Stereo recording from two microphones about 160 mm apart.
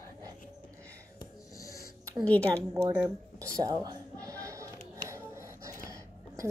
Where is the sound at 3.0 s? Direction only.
20° right (ahead or behind).